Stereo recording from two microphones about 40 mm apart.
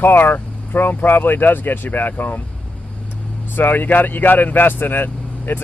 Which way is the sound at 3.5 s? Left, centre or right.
Left.